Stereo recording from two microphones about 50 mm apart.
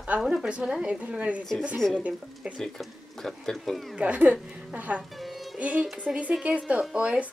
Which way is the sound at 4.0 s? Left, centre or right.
Right.